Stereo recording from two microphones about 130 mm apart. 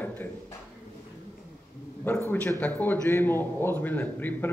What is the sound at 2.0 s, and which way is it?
A man's voice, 15° left (ahead or behind).